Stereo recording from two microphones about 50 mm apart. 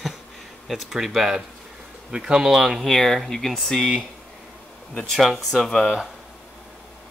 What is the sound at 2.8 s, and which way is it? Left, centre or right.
Speech, centre.